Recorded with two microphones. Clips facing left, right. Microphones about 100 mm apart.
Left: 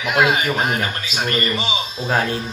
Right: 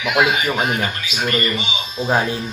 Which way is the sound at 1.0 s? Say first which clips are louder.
Right 1 dB; 35° left (ahead or behind).